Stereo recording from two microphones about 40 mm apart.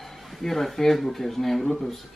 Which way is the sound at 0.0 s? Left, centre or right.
Centre.